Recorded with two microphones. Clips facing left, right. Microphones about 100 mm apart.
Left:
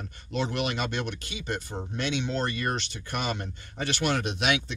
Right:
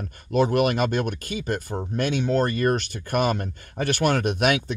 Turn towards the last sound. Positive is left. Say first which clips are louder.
# right 5 dB
turn(degrees=-50)  # may be behind; listen again after turning